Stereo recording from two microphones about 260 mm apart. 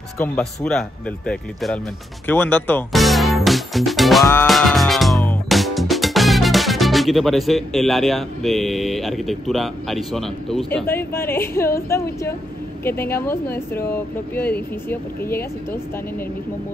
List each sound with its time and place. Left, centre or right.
0.2 s speech: centre